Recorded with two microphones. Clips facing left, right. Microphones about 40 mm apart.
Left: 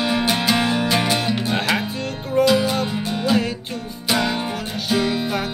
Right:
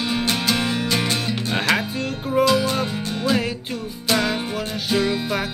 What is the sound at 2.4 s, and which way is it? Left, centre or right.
Music, centre.